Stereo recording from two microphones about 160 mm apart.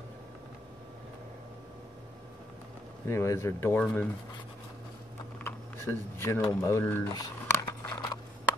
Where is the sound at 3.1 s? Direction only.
15° left (ahead or behind).